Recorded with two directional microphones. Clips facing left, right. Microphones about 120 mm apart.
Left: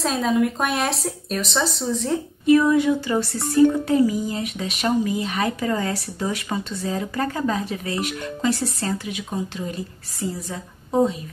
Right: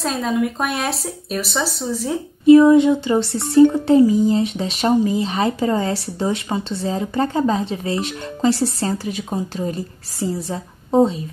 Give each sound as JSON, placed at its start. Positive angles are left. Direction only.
{"t": 0.0, "sound": "speech", "side_deg": 0}
{"t": 2.4, "sound": "a woman's voice", "side_deg": -25}